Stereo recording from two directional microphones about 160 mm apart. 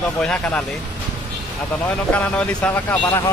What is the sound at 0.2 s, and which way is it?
Speech, 5° left (ahead or behind).